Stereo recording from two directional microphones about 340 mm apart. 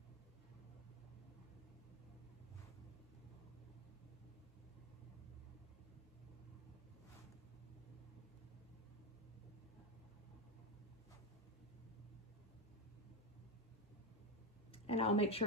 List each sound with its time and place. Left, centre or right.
14.7 s speech: centre